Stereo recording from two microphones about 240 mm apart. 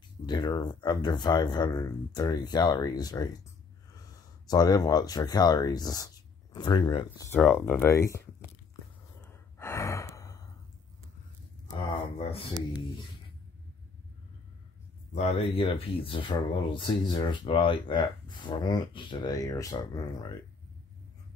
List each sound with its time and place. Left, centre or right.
0.3 s speech: centre
4.5 s speech: centre
7.2 s speech: centre
9.2 s gasp: centre
12.2 s a sound: left
15.1 s speech: left